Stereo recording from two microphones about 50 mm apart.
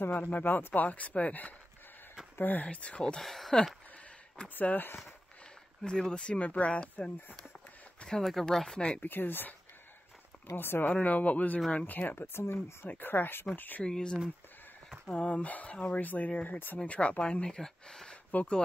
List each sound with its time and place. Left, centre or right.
0.4 s speech: left
2.7 s speech: left
3.2 s speech: centre
4.6 s speech: left
5.8 s speech: centre
8.2 s speech: centre
8.7 s speech: centre
9.0 s speech: left
11.0 s speech: left
13.8 s speech: centre
18.3 s speech: left